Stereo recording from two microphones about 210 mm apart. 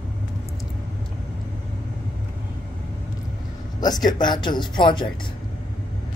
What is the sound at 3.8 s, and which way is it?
Speech, 20° left (ahead or behind).